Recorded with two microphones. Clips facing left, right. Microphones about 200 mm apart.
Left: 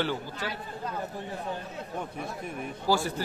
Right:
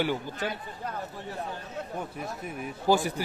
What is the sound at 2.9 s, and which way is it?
Speech, 20° right (ahead or behind).